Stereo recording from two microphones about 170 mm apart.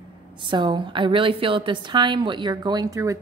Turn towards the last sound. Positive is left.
turn(degrees=-20)  # may be behind; listen again after turning